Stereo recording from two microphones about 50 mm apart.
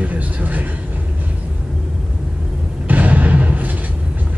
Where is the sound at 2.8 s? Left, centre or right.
Right.